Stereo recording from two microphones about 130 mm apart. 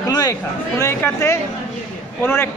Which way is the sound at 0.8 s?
15° left (ahead or behind).